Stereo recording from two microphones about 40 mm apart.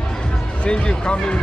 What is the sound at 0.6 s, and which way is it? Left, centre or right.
Speech, left.